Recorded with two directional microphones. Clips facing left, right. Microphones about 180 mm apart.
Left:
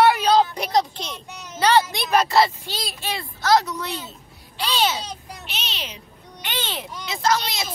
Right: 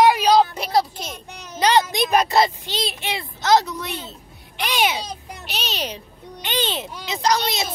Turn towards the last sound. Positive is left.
turn(degrees=-20)  # may be behind; listen again after turning